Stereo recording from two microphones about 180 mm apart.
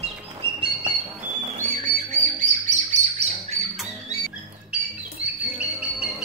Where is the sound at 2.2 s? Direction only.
40° right (ahead or behind).